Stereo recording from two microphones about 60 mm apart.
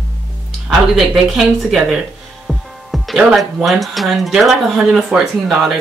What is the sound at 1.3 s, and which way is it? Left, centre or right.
Speech, centre.